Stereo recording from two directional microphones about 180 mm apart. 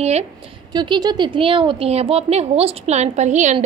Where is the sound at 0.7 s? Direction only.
25° right (ahead or behind); by 3.6 s 40° right (ahead or behind).